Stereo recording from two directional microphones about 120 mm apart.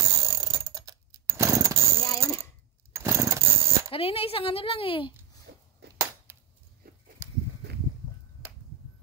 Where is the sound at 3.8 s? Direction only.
50° left (ahead or behind).